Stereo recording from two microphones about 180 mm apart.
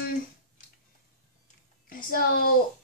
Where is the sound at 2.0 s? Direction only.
55° left (ahead or behind).